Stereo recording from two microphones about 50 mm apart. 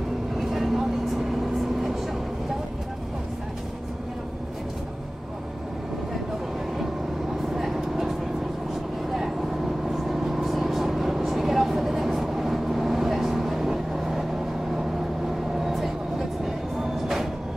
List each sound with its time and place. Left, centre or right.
0.4 s vehicle: centre
7.5 s vehicle: centre
9.8 s vehicle: centre
15.6 s vehicle: centre